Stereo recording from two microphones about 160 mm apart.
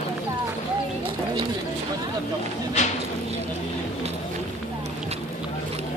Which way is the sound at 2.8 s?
45° left (ahead or behind).